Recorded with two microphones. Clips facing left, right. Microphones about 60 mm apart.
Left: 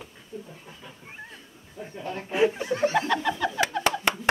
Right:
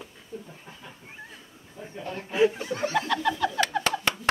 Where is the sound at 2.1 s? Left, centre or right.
Centre.